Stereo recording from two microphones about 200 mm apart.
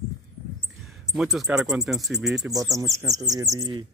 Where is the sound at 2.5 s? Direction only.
15° right (ahead or behind).